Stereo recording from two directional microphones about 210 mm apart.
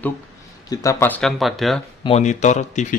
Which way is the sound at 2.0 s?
30° left (ahead or behind).